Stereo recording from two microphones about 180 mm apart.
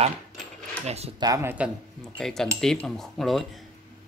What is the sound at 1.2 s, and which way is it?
Speech, 15° right (ahead or behind).